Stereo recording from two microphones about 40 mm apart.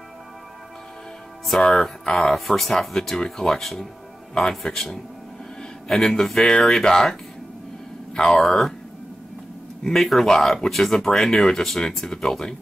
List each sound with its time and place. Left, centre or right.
1.7 s speech: centre
5.6 s a sound: centre
6.3 s speech: centre
8.3 s speech: centre
9.8 s speech: centre